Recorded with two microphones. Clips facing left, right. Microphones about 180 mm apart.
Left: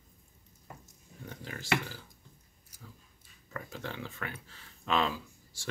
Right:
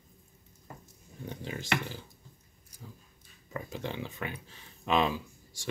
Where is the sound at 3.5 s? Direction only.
20° right (ahead or behind).